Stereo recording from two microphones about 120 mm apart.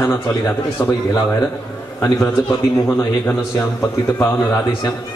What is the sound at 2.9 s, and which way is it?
A man's voice, 20° left (ahead or behind).